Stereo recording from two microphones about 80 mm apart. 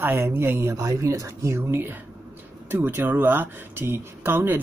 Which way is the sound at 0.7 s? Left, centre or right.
Right.